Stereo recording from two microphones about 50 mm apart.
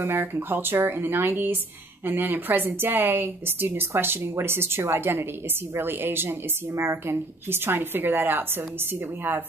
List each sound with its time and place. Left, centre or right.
0.0 s speech: right
6.7 s speech: right